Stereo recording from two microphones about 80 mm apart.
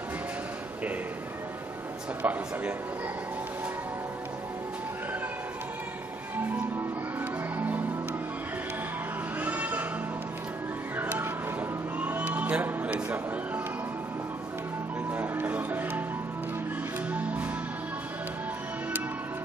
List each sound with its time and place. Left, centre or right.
2.2 s a man's voice: centre
7.5 s music: right
9.4 s a sound: right
11.0 s music: right
15.0 s music: right
17.1 s music: centre